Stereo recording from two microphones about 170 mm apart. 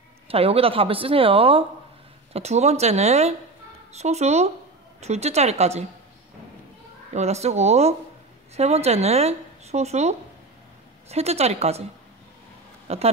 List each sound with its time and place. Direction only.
0.3 s speech: 35° right (ahead or behind)
7.2 s speech: 40° right (ahead or behind)
12.8 s speech: 35° right (ahead or behind)